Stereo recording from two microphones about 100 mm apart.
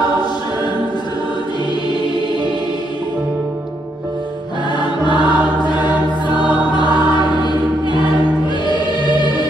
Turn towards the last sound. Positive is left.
turn(degrees=50)  # may be behind; listen again after turning